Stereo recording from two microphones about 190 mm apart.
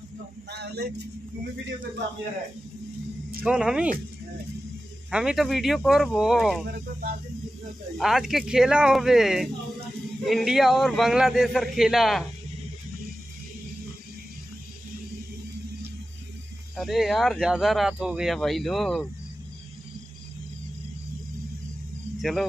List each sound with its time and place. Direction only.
0.5 s speech: 60° right (ahead or behind)
3.4 s speech: 5° right (ahead or behind)
5.1 s speech: 5° right (ahead or behind)
8.0 s speech: centre (ahead or behind)
16.7 s speech: centre (ahead or behind)
22.2 s speech: centre (ahead or behind)